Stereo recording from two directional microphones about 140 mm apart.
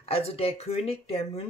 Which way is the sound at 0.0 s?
45° left (ahead or behind).